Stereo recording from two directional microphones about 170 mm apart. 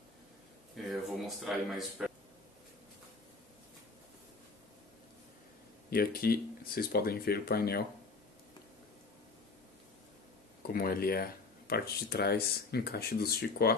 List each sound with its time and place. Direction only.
0.7 s speech: centre (ahead or behind)
5.9 s speech: 60° left (ahead or behind)
10.7 s speech: 65° left (ahead or behind)